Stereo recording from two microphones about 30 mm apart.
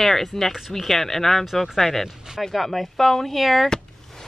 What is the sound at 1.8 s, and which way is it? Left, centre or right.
Speech, centre.